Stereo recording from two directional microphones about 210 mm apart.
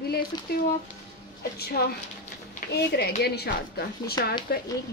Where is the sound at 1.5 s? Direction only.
50° left (ahead or behind).